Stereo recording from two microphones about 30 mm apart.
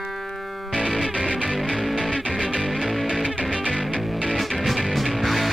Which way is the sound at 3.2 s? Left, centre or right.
Left.